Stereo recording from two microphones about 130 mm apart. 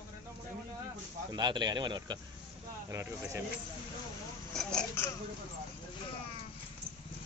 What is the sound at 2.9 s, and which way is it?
Speech, 20° right (ahead or behind).